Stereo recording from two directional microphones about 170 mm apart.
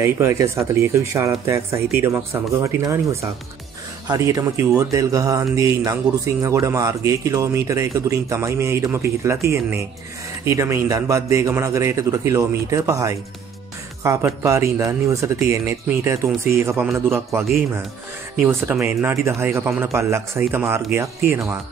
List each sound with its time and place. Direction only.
0.0 s speech: 15° right (ahead or behind)
10.4 s speech: 15° right (ahead or behind)